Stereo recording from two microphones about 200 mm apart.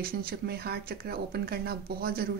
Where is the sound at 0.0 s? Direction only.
50° right (ahead or behind).